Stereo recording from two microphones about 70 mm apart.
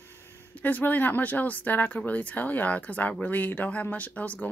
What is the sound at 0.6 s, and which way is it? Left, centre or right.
Speech, left.